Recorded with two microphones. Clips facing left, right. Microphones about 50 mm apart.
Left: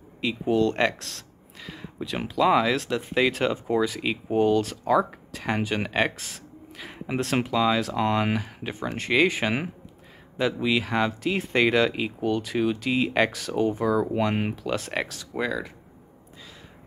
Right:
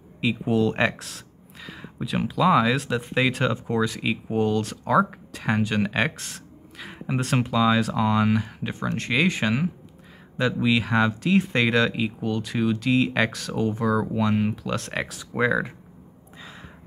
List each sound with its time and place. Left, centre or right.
0.2 s speech: centre
14.1 s speech: left
14.5 s speech: centre
15.3 s speech: right